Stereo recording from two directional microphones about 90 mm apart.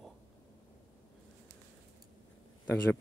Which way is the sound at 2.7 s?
25° left (ahead or behind).